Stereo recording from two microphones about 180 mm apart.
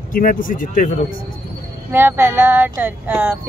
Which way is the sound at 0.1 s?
50° left (ahead or behind).